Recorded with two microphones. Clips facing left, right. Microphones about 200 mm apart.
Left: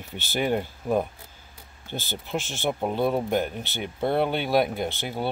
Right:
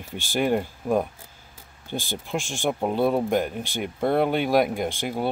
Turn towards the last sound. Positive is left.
turn(degrees=-10)  # may be behind; listen again after turning